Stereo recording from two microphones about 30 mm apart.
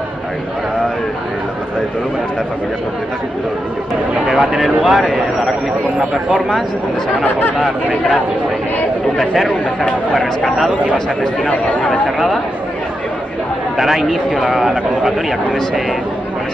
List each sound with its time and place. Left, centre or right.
4.3 s speech: centre
7.9 s speech: centre
9.2 s speech: centre
11.4 s speech: left
13.7 s a man's voice: centre